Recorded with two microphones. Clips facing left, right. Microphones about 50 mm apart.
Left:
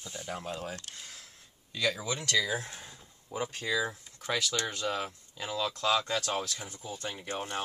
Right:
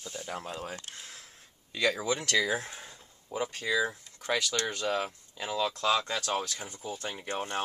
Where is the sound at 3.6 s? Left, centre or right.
Centre.